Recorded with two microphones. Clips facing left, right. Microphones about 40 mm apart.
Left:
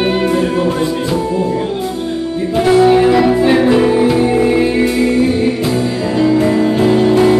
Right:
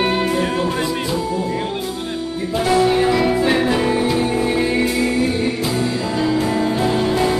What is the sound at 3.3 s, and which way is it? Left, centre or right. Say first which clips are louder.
Music: left 6 dB; centre.